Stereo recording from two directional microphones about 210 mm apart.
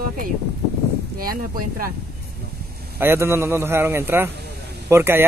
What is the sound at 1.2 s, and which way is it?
Speech, 45° right (ahead or behind).